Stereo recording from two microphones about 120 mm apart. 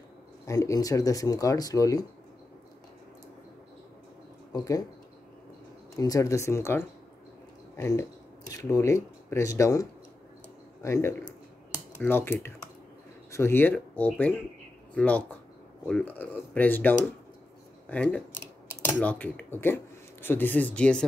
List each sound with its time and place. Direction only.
0.5 s speech: 30° left (ahead or behind)
4.5 s speech: 30° left (ahead or behind)
5.9 s a man's voice: 30° left (ahead or behind)
17.8 s scissors: 10° left (ahead or behind)
18.9 s speech: 10° left (ahead or behind)